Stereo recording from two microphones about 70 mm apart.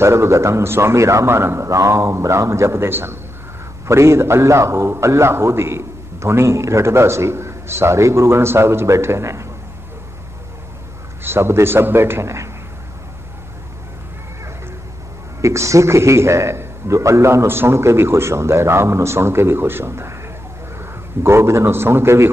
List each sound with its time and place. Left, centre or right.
0.0 s a man's voice: right
11.2 s a man's voice: right
15.4 s a man's voice: right